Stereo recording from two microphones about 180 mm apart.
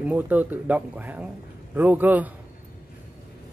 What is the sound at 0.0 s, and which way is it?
Speech, 10° right (ahead or behind).